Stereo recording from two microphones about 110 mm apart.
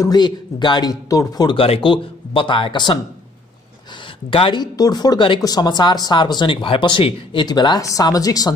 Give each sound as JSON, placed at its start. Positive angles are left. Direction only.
{"t": 0.0, "sound": "speech", "side_deg": 40}
{"t": 1.6, "sound": "speech", "side_deg": 55}
{"t": 4.3, "sound": "speech", "side_deg": 50}
{"t": 4.7, "sound": "speech", "side_deg": 35}